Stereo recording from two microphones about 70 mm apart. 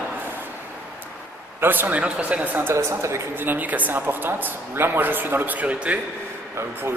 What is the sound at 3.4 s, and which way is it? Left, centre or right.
Speech, right.